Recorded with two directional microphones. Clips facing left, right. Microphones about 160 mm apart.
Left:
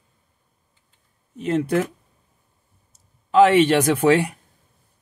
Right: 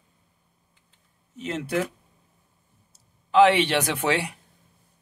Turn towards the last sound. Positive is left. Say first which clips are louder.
# left 8 dB
turn(degrees=45)  # may be behind; listen again after turning